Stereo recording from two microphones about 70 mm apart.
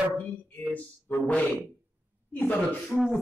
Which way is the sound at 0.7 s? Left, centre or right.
Left.